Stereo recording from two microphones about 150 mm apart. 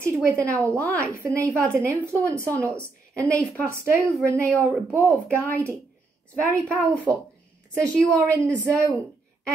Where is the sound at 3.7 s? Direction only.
20° right (ahead or behind).